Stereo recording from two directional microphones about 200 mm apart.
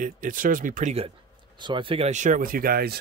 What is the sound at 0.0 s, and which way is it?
Speech, 40° right (ahead or behind).